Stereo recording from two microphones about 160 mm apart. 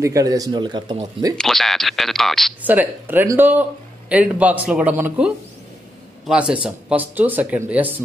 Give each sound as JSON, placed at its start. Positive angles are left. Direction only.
{"t": 0.0, "sound": "speech", "side_deg": -20}
{"t": 1.4, "sound": "speech", "side_deg": 0}
{"t": 2.6, "sound": "speech", "side_deg": -10}